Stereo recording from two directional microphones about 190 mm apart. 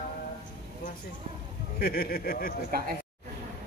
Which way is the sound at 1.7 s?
50° left (ahead or behind).